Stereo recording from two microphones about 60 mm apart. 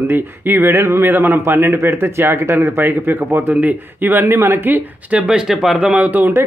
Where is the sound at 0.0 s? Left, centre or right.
Right.